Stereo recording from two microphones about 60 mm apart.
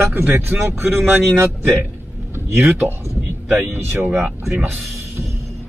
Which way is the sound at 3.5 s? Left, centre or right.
Right.